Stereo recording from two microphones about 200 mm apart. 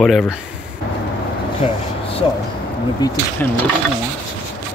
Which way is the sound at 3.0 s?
10° left (ahead or behind).